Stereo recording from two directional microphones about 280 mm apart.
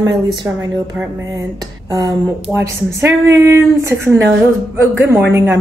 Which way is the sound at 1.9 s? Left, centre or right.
Centre.